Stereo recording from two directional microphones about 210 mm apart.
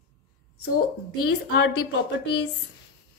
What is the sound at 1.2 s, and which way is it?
Speech, 50° left (ahead or behind).